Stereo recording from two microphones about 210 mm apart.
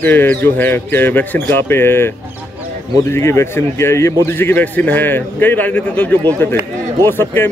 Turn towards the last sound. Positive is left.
turn(degrees=10)  # may be behind; listen again after turning